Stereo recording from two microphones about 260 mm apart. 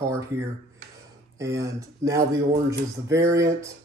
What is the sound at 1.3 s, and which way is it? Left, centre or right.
Speech, centre.